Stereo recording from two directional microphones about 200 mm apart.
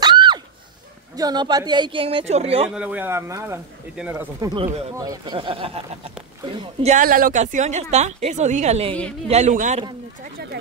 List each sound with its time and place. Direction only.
0.0 s a sound: 20° right (ahead or behind)
1.1 s a man's voice: 20° right (ahead or behind)
2.7 s a man's voice: 5° right (ahead or behind); by 9.8 s 35° right (ahead or behind)